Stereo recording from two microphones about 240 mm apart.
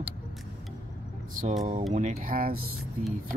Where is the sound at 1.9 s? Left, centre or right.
Right.